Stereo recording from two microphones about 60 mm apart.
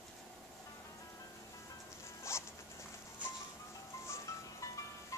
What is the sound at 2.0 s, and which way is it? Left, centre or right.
Zipper, left.